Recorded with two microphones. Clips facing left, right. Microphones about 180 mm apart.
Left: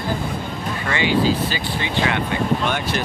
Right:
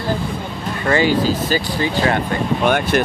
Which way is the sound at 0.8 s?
40° right (ahead or behind).